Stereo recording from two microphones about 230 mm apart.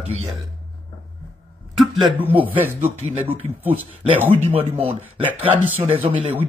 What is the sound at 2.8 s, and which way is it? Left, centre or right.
Speech, right.